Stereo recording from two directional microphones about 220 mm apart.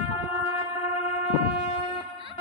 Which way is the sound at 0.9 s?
30° left (ahead or behind).